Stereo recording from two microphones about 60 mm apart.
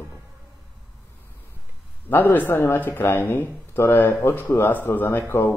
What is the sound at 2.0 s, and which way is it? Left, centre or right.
A man's voice, left.